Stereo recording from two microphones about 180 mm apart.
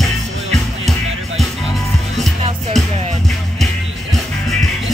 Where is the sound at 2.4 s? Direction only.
35° right (ahead or behind).